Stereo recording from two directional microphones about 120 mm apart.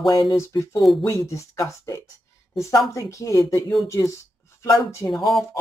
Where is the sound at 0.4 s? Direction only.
25° left (ahead or behind).